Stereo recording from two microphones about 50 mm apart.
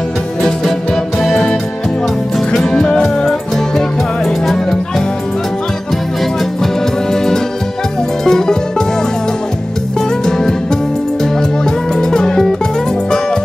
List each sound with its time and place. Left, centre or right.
1.2 s music: centre
6.6 s music: centre
11.3 s music: centre